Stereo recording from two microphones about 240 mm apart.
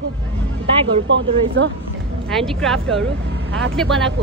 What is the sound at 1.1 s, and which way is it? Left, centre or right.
Speech, right.